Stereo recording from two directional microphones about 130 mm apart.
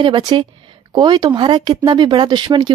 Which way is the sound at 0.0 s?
35° right (ahead or behind).